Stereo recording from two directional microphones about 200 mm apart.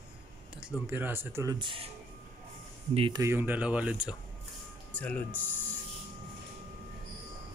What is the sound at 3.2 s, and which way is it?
Speech, 10° right (ahead or behind).